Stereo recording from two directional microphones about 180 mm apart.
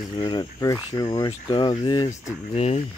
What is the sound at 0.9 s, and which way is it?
Speech, 25° left (ahead or behind).